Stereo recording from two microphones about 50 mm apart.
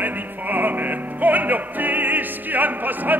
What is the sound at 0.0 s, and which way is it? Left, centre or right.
Music, right.